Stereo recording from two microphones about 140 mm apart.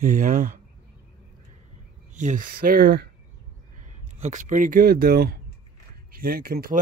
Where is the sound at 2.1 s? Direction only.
65° right (ahead or behind); by 2.9 s 90° right.